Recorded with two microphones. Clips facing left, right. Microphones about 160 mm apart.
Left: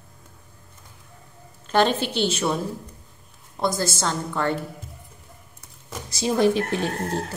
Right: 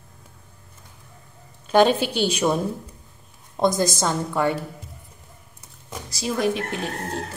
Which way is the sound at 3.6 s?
20° right (ahead or behind).